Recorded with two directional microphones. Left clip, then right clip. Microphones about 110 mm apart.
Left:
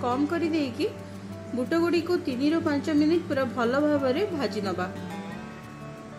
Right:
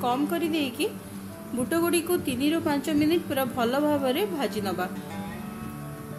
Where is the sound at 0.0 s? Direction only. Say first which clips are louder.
Even; 20° left (ahead or behind).